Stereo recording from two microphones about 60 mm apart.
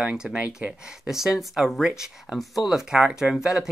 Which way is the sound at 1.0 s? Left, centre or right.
Centre.